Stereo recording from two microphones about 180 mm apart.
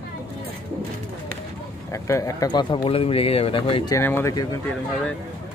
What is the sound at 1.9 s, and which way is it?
Speech, 15° left (ahead or behind).